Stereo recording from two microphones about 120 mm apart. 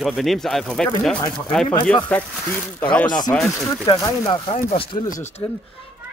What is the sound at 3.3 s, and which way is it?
Speech, 10° left (ahead or behind).